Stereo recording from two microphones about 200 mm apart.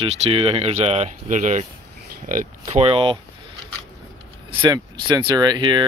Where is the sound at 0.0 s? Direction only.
30° right (ahead or behind).